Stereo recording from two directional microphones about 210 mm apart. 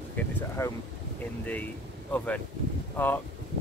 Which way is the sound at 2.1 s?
5° left (ahead or behind).